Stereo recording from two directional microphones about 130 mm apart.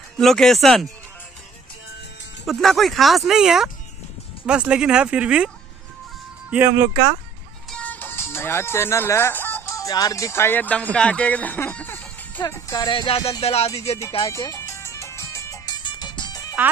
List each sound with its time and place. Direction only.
0.2 s speech: centre (ahead or behind)
2.4 s speech: centre (ahead or behind)
6.5 s speech: 15° right (ahead or behind)
7.7 s speech: 10° left (ahead or behind); by 13.7 s 50° left (ahead or behind)
14.3 s music: 25° left (ahead or behind)
15.8 s music: 35° left (ahead or behind)